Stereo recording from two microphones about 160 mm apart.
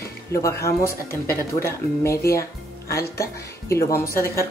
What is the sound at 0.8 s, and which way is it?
Speech, 65° left (ahead or behind).